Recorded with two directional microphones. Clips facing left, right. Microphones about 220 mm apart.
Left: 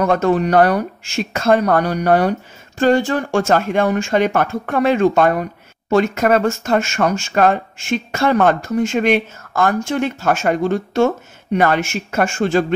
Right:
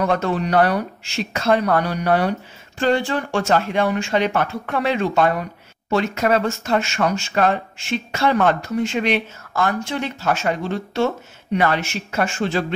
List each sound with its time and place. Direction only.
0.0 s speech: 45° left (ahead or behind)